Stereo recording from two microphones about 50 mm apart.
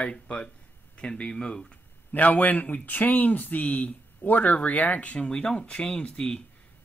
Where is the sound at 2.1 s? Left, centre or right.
Left.